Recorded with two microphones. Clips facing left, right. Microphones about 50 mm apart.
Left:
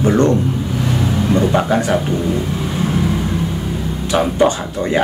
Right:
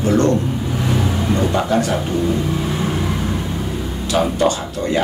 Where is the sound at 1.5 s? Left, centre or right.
Centre.